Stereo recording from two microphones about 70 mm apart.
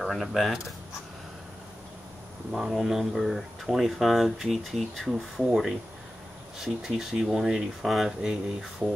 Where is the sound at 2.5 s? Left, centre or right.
Centre.